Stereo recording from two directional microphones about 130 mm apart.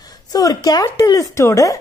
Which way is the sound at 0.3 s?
30° left (ahead or behind).